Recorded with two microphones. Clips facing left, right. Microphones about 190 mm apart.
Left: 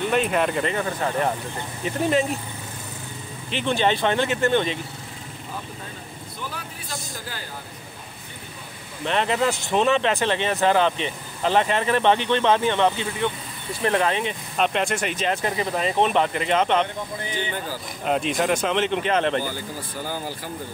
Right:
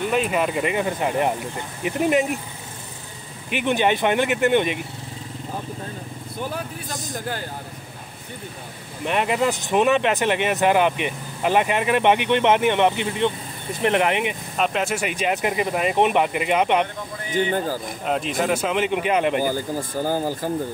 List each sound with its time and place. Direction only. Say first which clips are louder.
0.0 s speech: even; 5° right (ahead or behind)
3.4 s speech: right 2 dB; 15° right (ahead or behind)
9.0 s speech: right 1 dB; 10° right (ahead or behind)
14.6 s speech: even; 5° right (ahead or behind)
17.3 s speech: right 11 dB; 45° right (ahead or behind)
18.0 s speech: left 1 dB; centre (ahead or behind)
19.4 s speech: right 7 dB; 45° right (ahead or behind)